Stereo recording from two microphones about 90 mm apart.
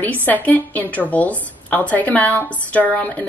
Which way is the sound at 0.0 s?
15° left (ahead or behind).